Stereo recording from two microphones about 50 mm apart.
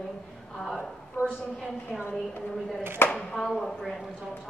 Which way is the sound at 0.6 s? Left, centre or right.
Centre.